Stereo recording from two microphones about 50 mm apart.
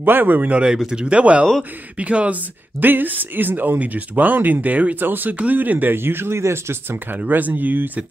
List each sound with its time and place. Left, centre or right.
0.0 s speech: right
0.5 s speech: right
0.7 s speech: centre
1.0 s speech: right
2.8 s speech: right
5.9 s speech: right
7.2 s speech: right